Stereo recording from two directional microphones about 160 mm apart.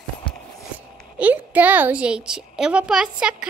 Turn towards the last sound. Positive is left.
turn(degrees=-5)  # may be behind; listen again after turning